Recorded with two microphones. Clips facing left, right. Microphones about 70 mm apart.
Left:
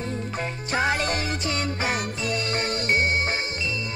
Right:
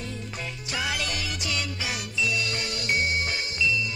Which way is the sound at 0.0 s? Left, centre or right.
Left.